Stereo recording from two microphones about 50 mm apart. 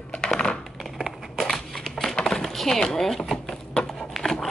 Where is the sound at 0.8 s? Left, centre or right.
Centre.